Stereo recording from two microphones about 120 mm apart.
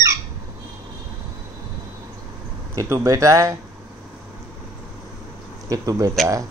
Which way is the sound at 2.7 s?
25° right (ahead or behind).